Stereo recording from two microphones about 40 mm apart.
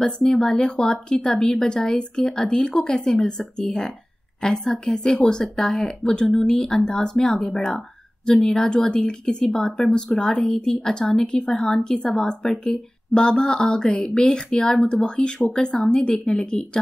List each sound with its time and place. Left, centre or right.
0.0 s a woman's voice: centre